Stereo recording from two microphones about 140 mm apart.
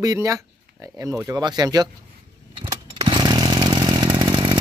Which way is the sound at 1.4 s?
30° right (ahead or behind).